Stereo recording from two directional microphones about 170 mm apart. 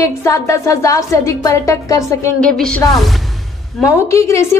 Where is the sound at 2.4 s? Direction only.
5° left (ahead or behind).